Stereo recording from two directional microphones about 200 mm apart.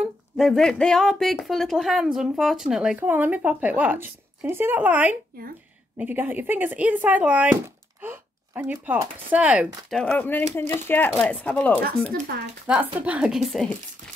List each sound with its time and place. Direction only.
0.0 s speech: centre (ahead or behind)
12.1 s speech: 50° right (ahead or behind)
12.6 s speech: 5° right (ahead or behind)